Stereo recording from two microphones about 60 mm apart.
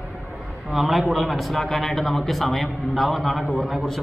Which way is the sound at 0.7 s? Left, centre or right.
Centre.